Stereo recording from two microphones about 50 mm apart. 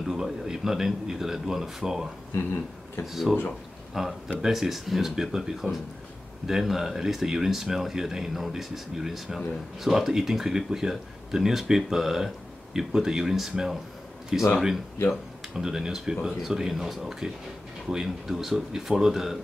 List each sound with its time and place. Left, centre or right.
0.0 s speech: centre
2.3 s speech: left
3.1 s speech: centre
15.5 s speech: centre